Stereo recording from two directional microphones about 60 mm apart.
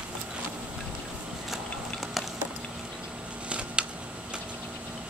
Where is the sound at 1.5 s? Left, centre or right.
Centre.